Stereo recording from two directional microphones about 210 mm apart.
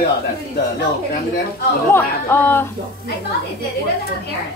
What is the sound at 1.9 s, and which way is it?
Speech, 10° left (ahead or behind).